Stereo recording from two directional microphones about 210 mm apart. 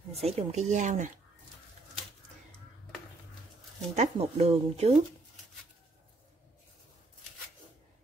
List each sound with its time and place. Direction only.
0.1 s speech: 30° right (ahead or behind)
3.9 s speech: 30° right (ahead or behind)